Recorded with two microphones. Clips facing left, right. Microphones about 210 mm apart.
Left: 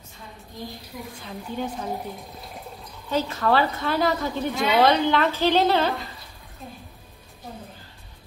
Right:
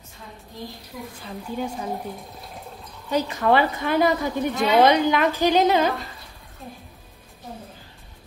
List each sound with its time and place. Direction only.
1.2 s a woman's voice: 5° right (ahead or behind)
3.1 s a woman's voice: 15° right (ahead or behind)
4.6 s a woman's voice: centre (ahead or behind)
4.8 s a woman's voice: 15° right (ahead or behind)